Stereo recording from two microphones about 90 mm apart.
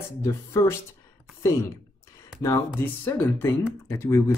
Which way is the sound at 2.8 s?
25° left (ahead or behind).